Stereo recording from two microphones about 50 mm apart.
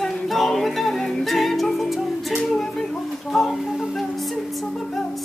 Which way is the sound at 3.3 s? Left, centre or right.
Centre.